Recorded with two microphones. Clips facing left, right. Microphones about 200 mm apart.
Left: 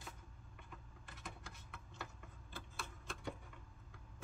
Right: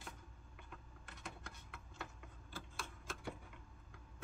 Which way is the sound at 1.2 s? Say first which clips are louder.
Right 1 dB; centre (ahead or behind).